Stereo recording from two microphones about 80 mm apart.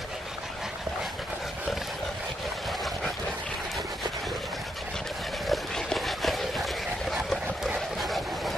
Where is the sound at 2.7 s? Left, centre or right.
Centre.